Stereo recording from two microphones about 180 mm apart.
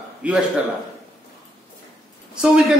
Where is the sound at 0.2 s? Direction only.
5° right (ahead or behind).